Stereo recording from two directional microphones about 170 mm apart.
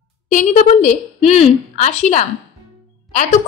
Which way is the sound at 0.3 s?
45° left (ahead or behind).